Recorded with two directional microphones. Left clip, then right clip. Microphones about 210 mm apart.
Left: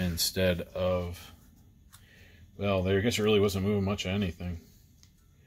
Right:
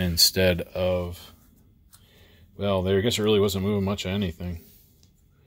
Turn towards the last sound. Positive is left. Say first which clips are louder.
# right 3 dB
turn(degrees=-35)  # may be behind; listen again after turning